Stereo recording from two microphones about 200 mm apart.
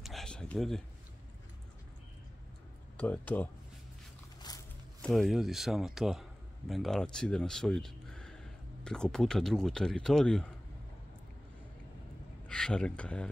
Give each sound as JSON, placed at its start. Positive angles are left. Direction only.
{"t": 0.0, "sound": "a sound", "side_deg": 0}
{"t": 3.0, "sound": "speech", "side_deg": 10}
{"t": 5.0, "sound": "speech", "side_deg": 0}
{"t": 12.4, "sound": "speech", "side_deg": 5}